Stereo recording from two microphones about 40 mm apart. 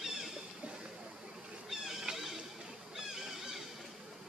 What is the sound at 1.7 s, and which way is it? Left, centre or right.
Cat, centre.